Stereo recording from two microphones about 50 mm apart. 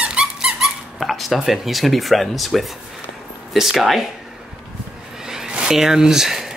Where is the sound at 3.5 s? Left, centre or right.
Centre.